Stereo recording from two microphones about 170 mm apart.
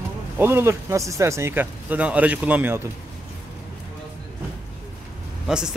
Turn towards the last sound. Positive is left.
turn(degrees=-5)  # may be behind; listen again after turning